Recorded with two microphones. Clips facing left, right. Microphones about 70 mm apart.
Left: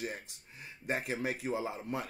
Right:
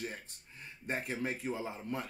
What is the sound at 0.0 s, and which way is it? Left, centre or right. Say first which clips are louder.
Speech: left 2 dB; centre.